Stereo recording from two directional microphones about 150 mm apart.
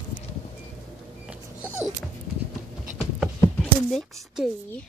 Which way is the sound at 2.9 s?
5° right (ahead or behind).